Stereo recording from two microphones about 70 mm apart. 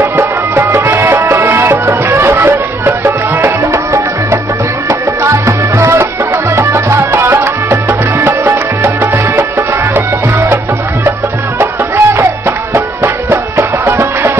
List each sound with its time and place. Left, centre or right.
0.1 s music: right
3.7 s music: right
11.6 s music: right